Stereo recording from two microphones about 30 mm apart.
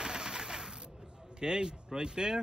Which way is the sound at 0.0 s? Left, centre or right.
Right.